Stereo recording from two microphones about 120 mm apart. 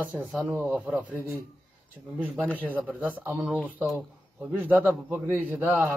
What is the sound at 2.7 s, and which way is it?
Speech, 10° right (ahead or behind).